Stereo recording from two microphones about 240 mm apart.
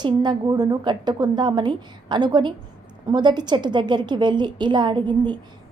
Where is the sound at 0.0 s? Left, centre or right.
Centre.